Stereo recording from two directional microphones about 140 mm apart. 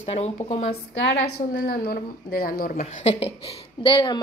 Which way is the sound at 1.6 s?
90° left.